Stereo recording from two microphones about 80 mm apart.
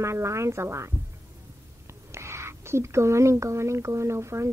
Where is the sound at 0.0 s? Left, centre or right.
Right.